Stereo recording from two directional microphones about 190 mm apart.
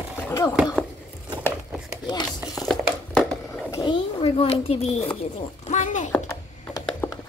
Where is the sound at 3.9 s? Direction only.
30° left (ahead or behind).